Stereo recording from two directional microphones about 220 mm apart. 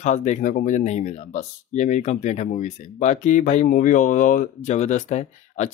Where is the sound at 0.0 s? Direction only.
30° left (ahead or behind).